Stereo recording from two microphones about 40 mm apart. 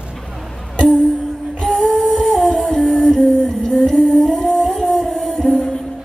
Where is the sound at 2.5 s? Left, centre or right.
Centre.